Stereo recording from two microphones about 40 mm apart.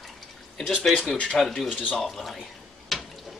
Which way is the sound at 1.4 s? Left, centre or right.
Centre.